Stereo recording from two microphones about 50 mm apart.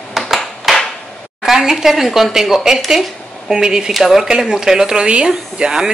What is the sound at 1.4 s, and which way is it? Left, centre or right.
Speech, centre.